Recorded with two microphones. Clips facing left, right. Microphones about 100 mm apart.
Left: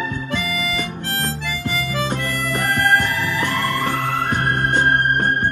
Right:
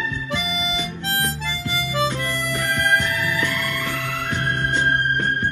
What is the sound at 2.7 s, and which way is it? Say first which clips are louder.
Music: left 3 dB; 45° left (ahead or behind).